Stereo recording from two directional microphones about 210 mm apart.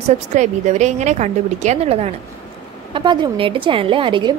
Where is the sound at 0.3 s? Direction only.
35° right (ahead or behind).